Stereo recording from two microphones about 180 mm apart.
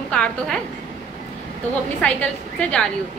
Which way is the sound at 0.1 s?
5° left (ahead or behind).